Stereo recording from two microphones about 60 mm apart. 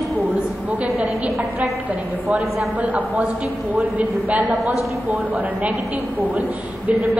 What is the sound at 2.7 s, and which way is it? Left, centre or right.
A woman's voice, right.